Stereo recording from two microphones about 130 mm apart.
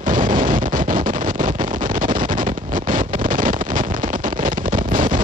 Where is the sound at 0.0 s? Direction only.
90° right.